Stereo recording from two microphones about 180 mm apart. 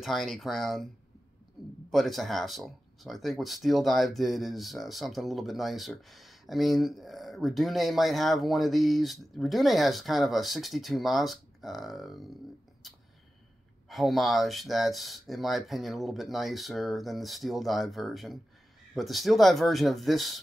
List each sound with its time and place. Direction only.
0.0 s speech: centre (ahead or behind)
1.9 s speech: centre (ahead or behind)
12.8 s a sound: centre (ahead or behind)
13.8 s speech: centre (ahead or behind)